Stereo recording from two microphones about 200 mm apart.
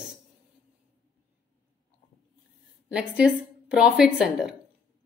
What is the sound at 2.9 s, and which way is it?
A woman's voice, 5° right (ahead or behind).